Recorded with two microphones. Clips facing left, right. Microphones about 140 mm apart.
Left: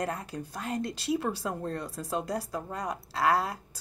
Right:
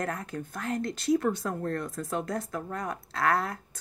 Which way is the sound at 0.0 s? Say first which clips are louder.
Even; 10° left (ahead or behind).